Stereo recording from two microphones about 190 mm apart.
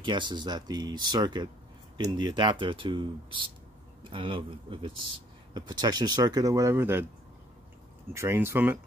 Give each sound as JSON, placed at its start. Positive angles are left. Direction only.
{"t": 0.0, "sound": "speech", "side_deg": -25}
{"t": 8.1, "sound": "speech", "side_deg": -15}